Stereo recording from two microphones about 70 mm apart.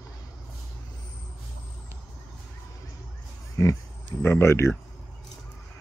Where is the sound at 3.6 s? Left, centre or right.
Left.